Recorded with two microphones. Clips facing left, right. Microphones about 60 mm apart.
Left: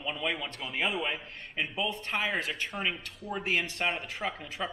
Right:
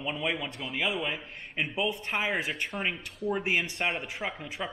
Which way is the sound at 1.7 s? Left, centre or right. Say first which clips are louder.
Right 2 dB; centre.